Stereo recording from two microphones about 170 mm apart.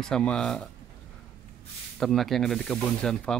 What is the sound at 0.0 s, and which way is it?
Speech, 5° left (ahead or behind).